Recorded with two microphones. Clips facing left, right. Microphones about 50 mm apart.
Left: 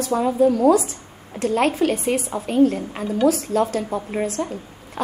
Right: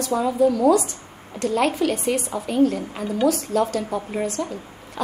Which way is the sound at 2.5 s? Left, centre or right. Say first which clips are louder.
Left 2 dB; left.